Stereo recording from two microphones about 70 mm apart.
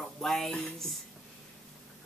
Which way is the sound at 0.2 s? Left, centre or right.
Centre.